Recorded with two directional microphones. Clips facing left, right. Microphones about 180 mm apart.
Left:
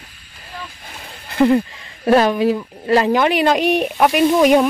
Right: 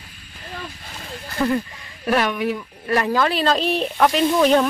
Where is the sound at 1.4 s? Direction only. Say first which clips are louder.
Left 7 dB; 25° left (ahead or behind).